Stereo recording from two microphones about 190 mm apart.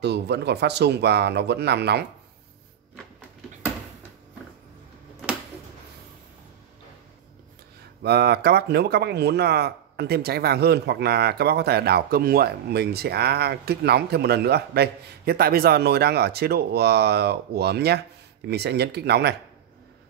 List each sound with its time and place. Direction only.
0.0 s speech: 60° right (ahead or behind)
8.0 s speech: 60° right (ahead or behind)